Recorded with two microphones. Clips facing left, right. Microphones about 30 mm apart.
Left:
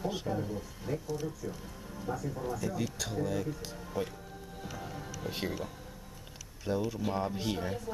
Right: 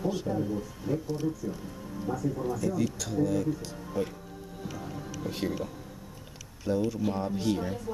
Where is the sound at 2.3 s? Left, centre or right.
Centre.